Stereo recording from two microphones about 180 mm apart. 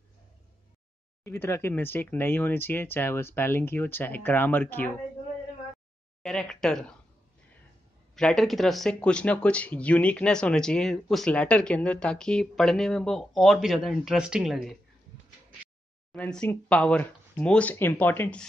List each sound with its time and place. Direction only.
1.2 s speech: 15° left (ahead or behind)
6.2 s speech: 5° left (ahead or behind)
8.2 s speech: 5° left (ahead or behind)
16.1 s speech: 5° left (ahead or behind)